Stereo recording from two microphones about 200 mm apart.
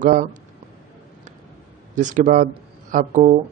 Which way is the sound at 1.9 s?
40° right (ahead or behind).